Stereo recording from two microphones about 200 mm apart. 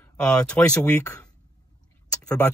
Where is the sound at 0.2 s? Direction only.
5° left (ahead or behind).